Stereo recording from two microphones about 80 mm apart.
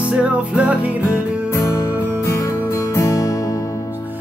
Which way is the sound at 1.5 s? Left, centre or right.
Left.